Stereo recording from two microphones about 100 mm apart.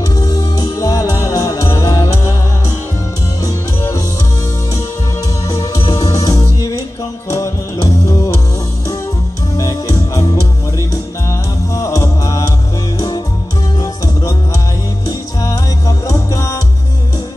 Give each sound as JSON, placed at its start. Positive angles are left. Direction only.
{"t": 0.1, "sound": "music", "side_deg": 40}
{"t": 5.5, "sound": "music", "side_deg": 35}
{"t": 9.6, "sound": "music", "side_deg": 35}
{"t": 11.7, "sound": "music", "side_deg": 35}
{"t": 13.7, "sound": "music", "side_deg": 40}